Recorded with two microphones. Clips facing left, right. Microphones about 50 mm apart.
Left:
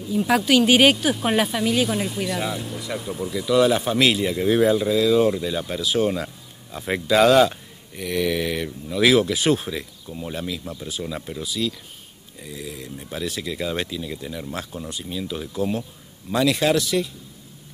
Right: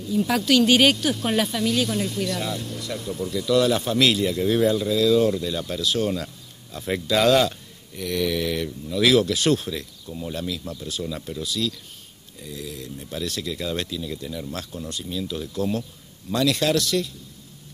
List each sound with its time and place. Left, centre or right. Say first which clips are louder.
0.0 s speech: left 2 dB; centre